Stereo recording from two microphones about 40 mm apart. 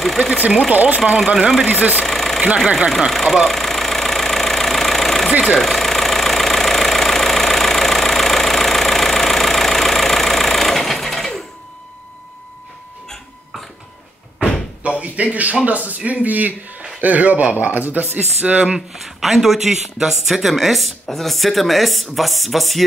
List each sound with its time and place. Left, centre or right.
0.0 s vehicle: centre
0.7 s speech: right
2.0 s vehicle: centre
3.1 s engine: centre
5.5 s vehicle: centre
15.0 s a man's voice: right
18.4 s speech: right
18.9 s speech: centre